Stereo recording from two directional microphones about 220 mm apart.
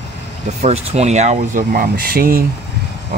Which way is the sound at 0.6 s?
30° right (ahead or behind).